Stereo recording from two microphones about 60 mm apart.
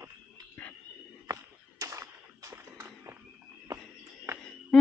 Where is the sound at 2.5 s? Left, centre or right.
Right.